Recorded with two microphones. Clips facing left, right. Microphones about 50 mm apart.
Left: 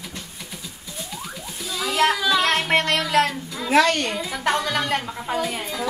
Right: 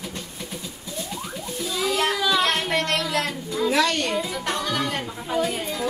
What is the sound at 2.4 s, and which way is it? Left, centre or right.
Music, left.